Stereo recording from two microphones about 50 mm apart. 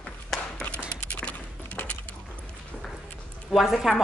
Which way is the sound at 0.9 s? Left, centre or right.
Left.